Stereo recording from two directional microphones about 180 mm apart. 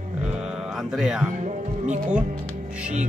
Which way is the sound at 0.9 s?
5° right (ahead or behind).